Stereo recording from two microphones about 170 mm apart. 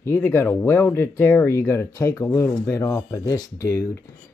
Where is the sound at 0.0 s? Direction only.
15° left (ahead or behind).